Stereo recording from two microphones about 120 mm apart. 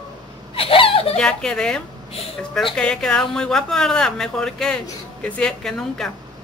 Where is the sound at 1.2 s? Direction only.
5° left (ahead or behind).